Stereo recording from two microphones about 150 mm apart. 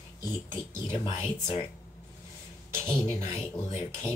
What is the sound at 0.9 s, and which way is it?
Speech, 35° left (ahead or behind).